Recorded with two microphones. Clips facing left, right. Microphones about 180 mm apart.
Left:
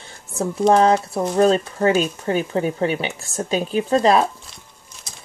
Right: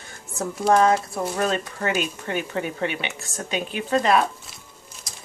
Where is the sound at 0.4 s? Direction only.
30° left (ahead or behind).